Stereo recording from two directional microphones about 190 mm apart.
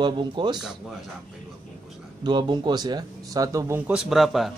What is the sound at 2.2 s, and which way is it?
Speech, 25° right (ahead or behind).